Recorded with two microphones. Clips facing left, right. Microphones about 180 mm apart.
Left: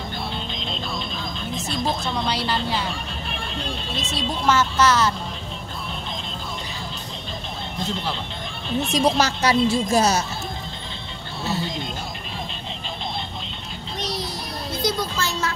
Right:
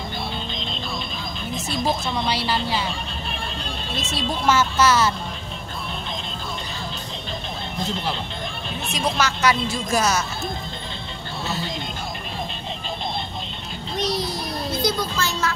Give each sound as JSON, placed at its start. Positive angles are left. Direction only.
{"t": 0.5, "sound": "music", "side_deg": 0}
{"t": 1.7, "sound": "speech", "side_deg": -5}
{"t": 3.9, "sound": "speech", "side_deg": -5}
{"t": 8.9, "sound": "a woman's voice", "side_deg": 35}
{"t": 14.9, "sound": "a sound", "side_deg": 30}